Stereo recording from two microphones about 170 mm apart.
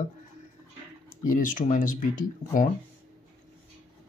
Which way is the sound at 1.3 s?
50° left (ahead or behind).